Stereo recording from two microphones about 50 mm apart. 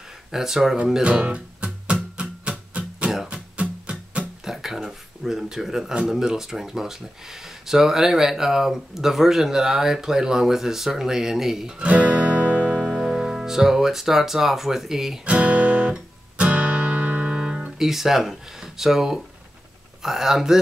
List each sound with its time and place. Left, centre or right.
0.3 s speech: centre
1.0 s music: right
4.5 s speech: centre
11.8 s music: right
12.5 s music: centre
12.8 s speech: centre
15.2 s speech: right
15.9 s guitar: right
17.4 s speech: centre